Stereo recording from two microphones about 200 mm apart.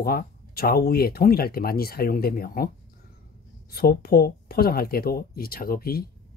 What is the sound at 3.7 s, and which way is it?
Speech, 50° left (ahead or behind).